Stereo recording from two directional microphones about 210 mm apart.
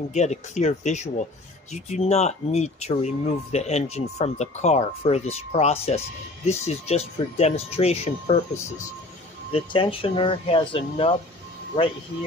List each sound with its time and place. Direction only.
0.1 s speech: 35° left (ahead or behind)
9.5 s speech: 25° left (ahead or behind)